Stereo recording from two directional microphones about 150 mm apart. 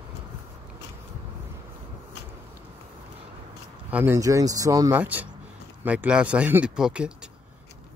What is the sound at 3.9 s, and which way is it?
Speech, 15° right (ahead or behind).